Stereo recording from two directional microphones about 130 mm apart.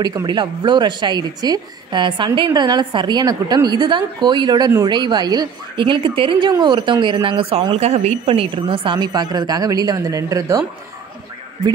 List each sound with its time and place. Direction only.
0.0 s speech: 30° right (ahead or behind)